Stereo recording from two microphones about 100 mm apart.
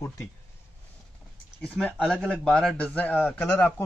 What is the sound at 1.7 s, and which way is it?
A man's voice, 10° left (ahead or behind).